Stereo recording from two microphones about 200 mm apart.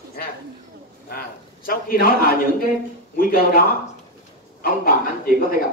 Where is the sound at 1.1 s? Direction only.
45° left (ahead or behind).